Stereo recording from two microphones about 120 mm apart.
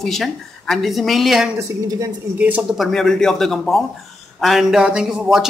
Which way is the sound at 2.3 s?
15° right (ahead or behind).